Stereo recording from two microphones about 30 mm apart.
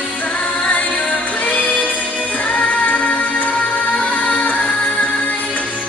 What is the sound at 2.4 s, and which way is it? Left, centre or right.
Music, left.